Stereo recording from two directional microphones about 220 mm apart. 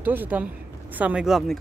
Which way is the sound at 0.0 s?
10° right (ahead or behind).